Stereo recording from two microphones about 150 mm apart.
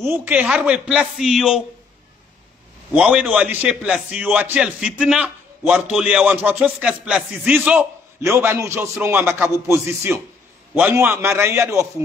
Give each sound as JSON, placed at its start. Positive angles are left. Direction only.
{"t": 0.0, "sound": "a man's voice", "side_deg": -15}
{"t": 2.9, "sound": "speech", "side_deg": -10}